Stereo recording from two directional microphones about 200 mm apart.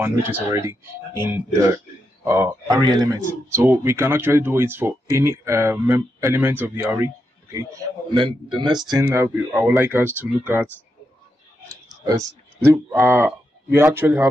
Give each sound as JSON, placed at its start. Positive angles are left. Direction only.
{"t": 0.0, "sound": "speech", "side_deg": -10}
{"t": 8.1, "sound": "speech", "side_deg": -25}
{"t": 9.0, "sound": "speech", "side_deg": -10}
{"t": 12.6, "sound": "speech", "side_deg": -10}